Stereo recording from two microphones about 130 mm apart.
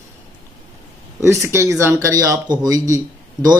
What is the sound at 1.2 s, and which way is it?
Speech, 20° right (ahead or behind).